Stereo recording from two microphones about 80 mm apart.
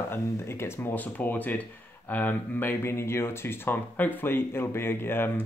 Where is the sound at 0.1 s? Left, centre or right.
Left.